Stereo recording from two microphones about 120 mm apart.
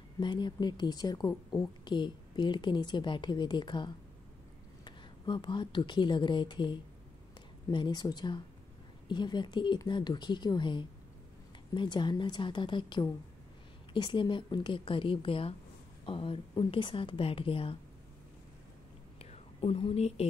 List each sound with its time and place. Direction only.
0.2 s a woman's voice: 40° left (ahead or behind)
19.1 s whispering: 55° left (ahead or behind)